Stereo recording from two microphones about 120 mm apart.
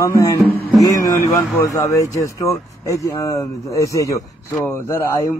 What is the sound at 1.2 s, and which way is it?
Speech, 25° left (ahead or behind).